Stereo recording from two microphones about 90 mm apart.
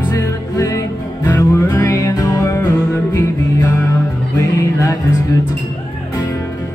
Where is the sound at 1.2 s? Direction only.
25° left (ahead or behind); by 2.5 s 40° left (ahead or behind).